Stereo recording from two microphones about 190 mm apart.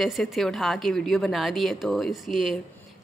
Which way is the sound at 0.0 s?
Centre (ahead or behind).